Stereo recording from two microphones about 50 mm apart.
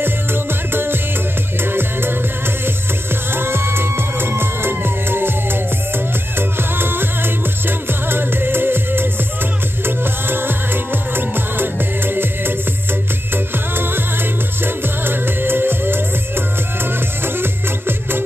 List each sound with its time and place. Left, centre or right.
0.0 s music: right
3.3 s music: right
13.7 s music: right